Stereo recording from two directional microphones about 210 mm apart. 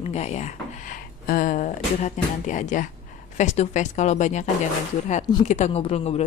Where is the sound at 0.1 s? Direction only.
30° left (ahead or behind).